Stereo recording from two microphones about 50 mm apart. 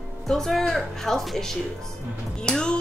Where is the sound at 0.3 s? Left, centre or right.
Centre.